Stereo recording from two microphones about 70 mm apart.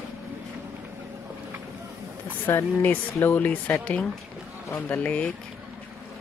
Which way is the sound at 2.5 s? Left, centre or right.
Left.